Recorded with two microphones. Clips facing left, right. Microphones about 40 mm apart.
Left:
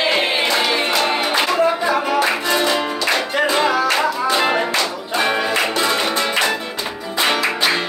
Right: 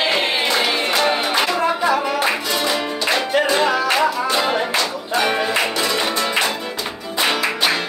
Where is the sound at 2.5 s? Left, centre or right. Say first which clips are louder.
Left 3 dB; left.